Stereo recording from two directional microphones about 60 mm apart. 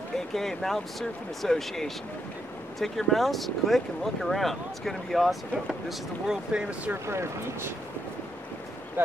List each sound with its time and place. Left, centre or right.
0.3 s speech: centre
7.1 s speech: right
9.0 s speech: right